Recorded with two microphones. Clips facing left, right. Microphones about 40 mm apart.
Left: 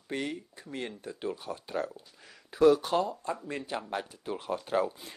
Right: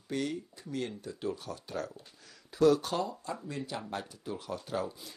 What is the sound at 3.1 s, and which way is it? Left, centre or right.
Speech, left.